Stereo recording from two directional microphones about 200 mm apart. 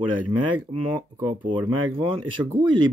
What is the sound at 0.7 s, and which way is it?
Speech, 25° right (ahead or behind).